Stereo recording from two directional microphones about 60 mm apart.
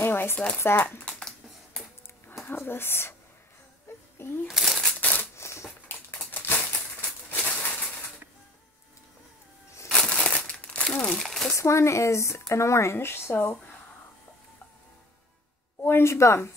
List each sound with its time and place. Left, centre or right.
0.0 s a sound: left
0.7 s speech: left
2.5 s speech: left
3.9 s a sound: left
4.5 s crumpling: centre
5.3 s a sound: left
5.9 s a sound: left
7.2 s bird: left
9.8 s crumpling: centre
11.2 s speech: centre
11.5 s speech: left
15.8 s speech: left